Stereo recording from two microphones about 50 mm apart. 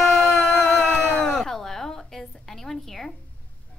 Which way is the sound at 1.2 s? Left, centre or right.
Centre.